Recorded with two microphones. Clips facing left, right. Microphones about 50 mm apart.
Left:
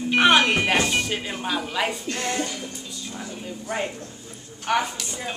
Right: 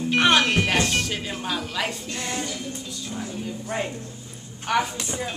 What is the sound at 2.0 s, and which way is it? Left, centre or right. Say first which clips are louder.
Speech: left 4 dB; left.